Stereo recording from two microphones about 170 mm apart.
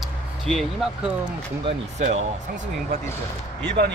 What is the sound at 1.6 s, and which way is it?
Speech, 40° right (ahead or behind).